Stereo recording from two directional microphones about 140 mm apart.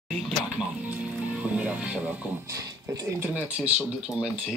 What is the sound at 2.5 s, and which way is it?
Speech, 20° right (ahead or behind).